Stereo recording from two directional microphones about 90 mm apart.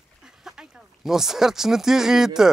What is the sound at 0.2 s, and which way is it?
Speech, 5° right (ahead or behind).